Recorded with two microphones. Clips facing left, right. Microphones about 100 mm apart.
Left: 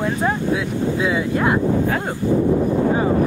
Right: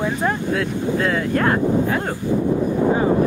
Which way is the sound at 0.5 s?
10° left (ahead or behind).